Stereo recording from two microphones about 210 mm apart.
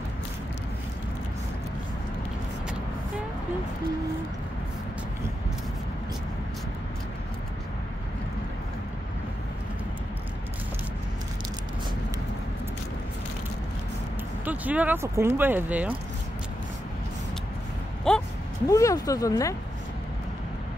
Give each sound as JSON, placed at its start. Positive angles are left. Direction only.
{"t": 14.4, "sound": "speech", "side_deg": -5}
{"t": 18.1, "sound": "a sound", "side_deg": 5}
{"t": 18.7, "sound": "speech", "side_deg": 15}